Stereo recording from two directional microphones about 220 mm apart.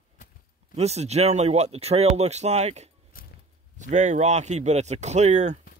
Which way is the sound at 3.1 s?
40° left (ahead or behind).